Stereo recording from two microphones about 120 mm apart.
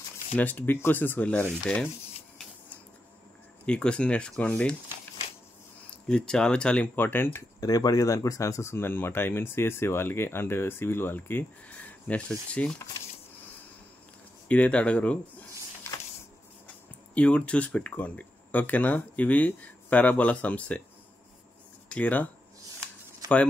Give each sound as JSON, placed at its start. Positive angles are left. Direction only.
{"t": 0.4, "sound": "speech", "side_deg": 15}
{"t": 3.6, "sound": "speech", "side_deg": 10}
{"t": 6.0, "sound": "speech", "side_deg": 5}
{"t": 7.6, "sound": "speech", "side_deg": 30}
{"t": 14.5, "sound": "speech", "side_deg": 10}
{"t": 16.6, "sound": "speech", "side_deg": 10}
{"t": 21.8, "sound": "speech", "side_deg": 10}